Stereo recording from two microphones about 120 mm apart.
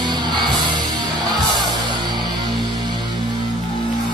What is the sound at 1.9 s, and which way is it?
Music, 40° right (ahead or behind).